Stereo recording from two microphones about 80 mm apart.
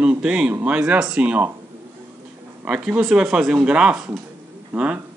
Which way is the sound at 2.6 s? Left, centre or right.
Centre.